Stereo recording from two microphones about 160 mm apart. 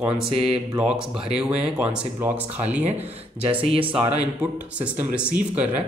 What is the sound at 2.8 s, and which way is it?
Speech, 40° right (ahead or behind).